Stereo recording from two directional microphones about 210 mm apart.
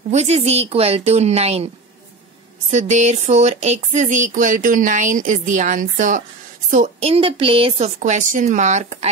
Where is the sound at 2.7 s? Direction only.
35° right (ahead or behind).